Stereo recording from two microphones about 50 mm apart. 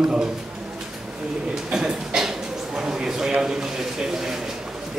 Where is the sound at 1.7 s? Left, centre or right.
Centre.